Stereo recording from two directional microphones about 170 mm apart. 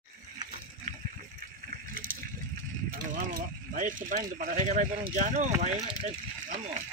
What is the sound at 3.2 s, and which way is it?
Speech, 55° right (ahead or behind).